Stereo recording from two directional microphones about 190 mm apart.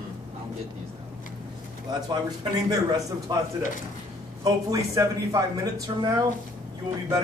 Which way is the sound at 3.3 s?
20° right (ahead or behind).